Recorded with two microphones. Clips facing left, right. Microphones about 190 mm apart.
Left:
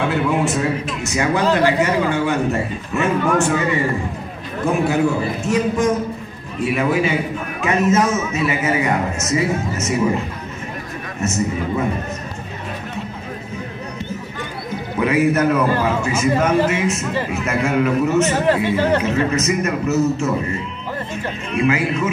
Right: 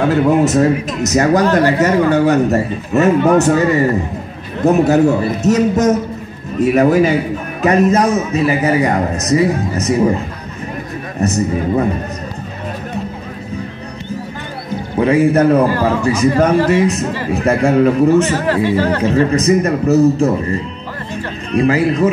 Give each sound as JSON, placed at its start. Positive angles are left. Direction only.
{"t": 0.0, "sound": "a man's voice", "side_deg": -40}
{"t": 11.1, "sound": "a man's voice", "side_deg": -35}
{"t": 15.0, "sound": "a man's voice", "side_deg": -30}
{"t": 18.5, "sound": "speech", "side_deg": 20}
{"t": 18.9, "sound": "a man's voice", "side_deg": -35}
{"t": 21.1, "sound": "music", "side_deg": -35}